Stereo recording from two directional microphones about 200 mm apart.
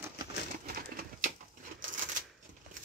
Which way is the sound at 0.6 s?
45° right (ahead or behind).